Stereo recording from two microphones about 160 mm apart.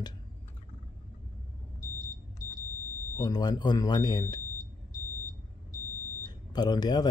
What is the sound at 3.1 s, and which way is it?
Speech, 25° left (ahead or behind).